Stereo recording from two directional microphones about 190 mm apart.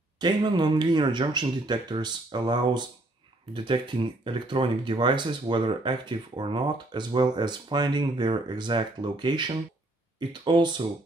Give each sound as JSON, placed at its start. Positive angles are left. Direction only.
{"t": 0.2, "sound": "speech", "side_deg": -25}